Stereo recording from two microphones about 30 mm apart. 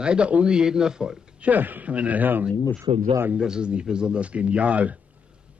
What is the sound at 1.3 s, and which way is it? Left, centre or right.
Speech, right.